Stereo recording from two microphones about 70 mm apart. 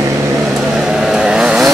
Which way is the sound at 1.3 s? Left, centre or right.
Centre.